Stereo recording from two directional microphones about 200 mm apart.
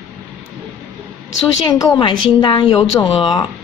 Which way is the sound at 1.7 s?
20° left (ahead or behind).